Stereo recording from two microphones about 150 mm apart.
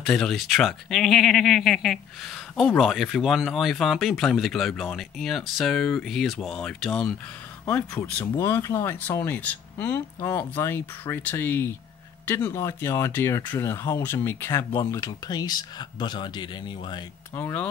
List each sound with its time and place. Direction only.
0.0 s speech: 5° left (ahead or behind); by 17.0 s 30° left (ahead or behind)
17.4 s speech: 15° left (ahead or behind)